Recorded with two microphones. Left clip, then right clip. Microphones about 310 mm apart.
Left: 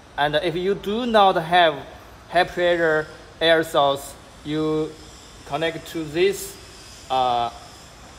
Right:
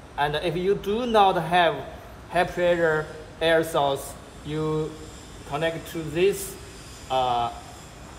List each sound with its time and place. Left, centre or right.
0.1 s speech: left